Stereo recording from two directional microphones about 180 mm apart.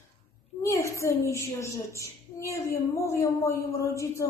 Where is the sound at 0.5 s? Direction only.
15° left (ahead or behind).